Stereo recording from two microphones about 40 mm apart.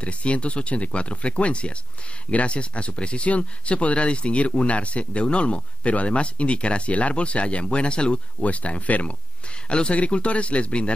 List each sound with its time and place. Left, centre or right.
0.0 s speech: left
9.7 s speech: left